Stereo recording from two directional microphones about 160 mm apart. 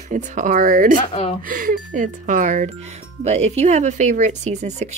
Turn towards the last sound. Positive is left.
turn(degrees=-45)  # may be behind; listen again after turning